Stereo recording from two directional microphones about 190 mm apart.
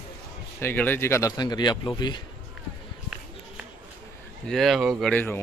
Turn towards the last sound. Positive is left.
turn(degrees=10)  # may be behind; listen again after turning